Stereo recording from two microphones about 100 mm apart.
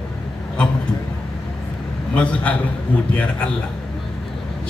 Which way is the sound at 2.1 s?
15° left (ahead or behind).